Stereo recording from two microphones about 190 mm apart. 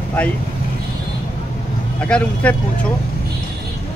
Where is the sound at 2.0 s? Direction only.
5° left (ahead or behind).